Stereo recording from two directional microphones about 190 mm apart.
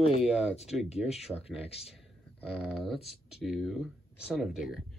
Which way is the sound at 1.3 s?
30° left (ahead or behind).